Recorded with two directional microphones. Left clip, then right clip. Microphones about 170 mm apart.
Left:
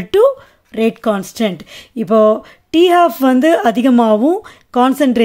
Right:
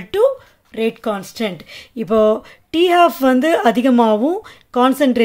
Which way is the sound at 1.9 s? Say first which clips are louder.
Left 3 dB; 20° left (ahead or behind).